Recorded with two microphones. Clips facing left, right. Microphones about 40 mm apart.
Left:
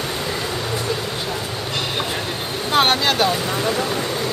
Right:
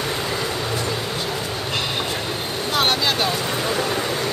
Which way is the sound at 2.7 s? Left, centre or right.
Left.